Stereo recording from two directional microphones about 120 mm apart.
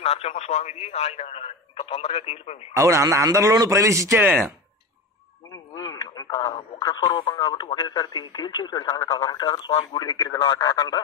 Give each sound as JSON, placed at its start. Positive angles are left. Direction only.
{"t": 0.0, "sound": "speech", "side_deg": 55}
{"t": 2.7, "sound": "a man's voice", "side_deg": -25}
{"t": 5.5, "sound": "speech", "side_deg": 30}
{"t": 8.9, "sound": "speech", "side_deg": 25}
{"t": 9.2, "sound": "speech", "side_deg": 35}